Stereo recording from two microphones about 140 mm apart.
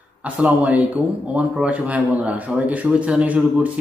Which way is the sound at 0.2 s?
10° right (ahead or behind).